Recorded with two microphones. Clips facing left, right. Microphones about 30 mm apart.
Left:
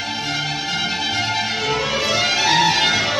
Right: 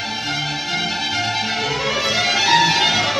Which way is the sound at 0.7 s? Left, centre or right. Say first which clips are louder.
Even; centre.